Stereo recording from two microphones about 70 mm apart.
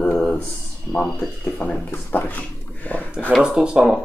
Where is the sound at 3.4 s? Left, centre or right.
Centre.